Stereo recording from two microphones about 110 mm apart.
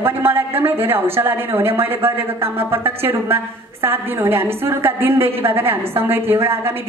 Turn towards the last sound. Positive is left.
turn(degrees=-20)  # may be behind; listen again after turning